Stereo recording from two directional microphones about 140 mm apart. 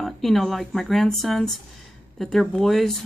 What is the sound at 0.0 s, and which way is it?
Speech, centre (ahead or behind).